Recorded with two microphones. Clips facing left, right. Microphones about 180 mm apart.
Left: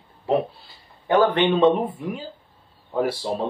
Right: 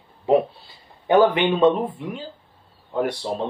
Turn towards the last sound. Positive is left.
turn(degrees=5)  # may be behind; listen again after turning